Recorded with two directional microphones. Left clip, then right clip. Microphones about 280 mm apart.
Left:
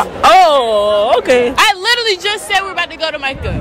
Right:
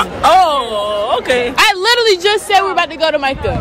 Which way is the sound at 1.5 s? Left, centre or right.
Centre.